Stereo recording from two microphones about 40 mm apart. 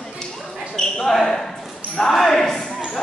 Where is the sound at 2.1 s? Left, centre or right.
Centre.